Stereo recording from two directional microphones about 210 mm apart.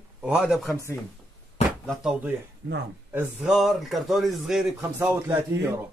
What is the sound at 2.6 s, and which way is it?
Speech, 55° right (ahead or behind).